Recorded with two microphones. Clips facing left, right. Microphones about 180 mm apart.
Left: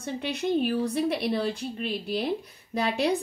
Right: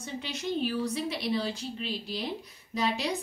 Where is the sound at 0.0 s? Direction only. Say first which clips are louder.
Left 6 dB; 55° left (ahead or behind).